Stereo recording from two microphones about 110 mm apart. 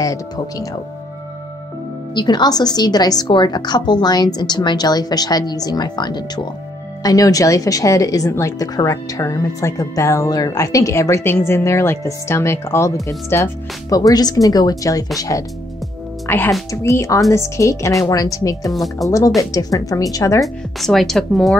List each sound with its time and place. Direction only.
0.0 s a woman's voice: 30° left (ahead or behind)
2.1 s a woman's voice: 40° left (ahead or behind)
16.3 s a woman's voice: 20° left (ahead or behind)
18.7 s speech: centre (ahead or behind)
19.0 s a woman's voice: 30° left (ahead or behind)
20.4 s speech: centre (ahead or behind)